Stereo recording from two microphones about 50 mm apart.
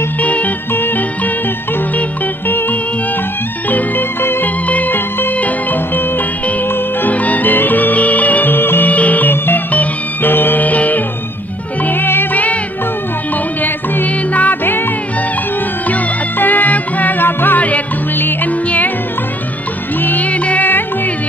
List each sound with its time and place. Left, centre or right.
0.2 s music: left
3.7 s music: left
4.6 s music: left
8.8 s music: left
13.6 s music: left
15.9 s music: left
17.6 s music: left
18.1 s music: left
20.0 s music: left